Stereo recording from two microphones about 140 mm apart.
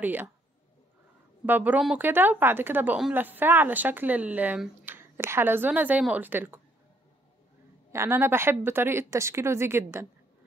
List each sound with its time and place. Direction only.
0.0 s speech: 15° right (ahead or behind)
1.4 s speech: 10° right (ahead or behind)
7.9 s speech: 15° right (ahead or behind)